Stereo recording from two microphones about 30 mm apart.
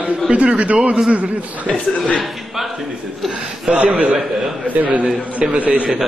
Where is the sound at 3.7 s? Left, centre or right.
Right.